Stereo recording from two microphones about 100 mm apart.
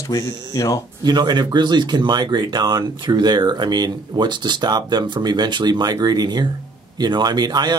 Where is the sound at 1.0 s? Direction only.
45° right (ahead or behind).